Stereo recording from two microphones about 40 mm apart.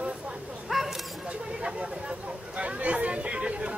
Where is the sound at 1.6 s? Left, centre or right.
Right.